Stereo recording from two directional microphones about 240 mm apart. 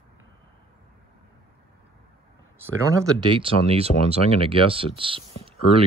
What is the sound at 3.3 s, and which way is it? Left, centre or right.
Speech, right.